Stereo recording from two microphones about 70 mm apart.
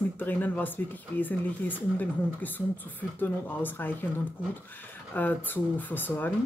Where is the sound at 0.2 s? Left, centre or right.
Left.